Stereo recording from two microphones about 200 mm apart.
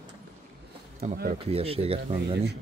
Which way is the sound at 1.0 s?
35° right (ahead or behind).